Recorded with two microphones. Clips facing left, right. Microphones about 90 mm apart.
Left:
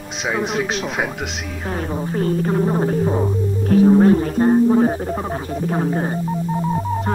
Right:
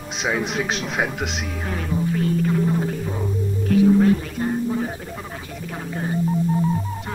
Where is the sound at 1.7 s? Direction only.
40° left (ahead or behind).